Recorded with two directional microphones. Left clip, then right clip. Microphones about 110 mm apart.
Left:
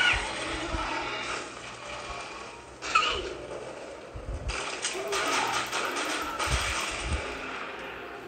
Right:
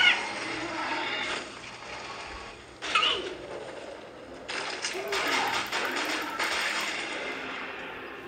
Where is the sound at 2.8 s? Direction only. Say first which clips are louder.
Even; 45° right (ahead or behind).